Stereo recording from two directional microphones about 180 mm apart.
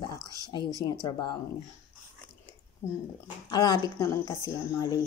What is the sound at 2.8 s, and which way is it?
Speech, 15° left (ahead or behind).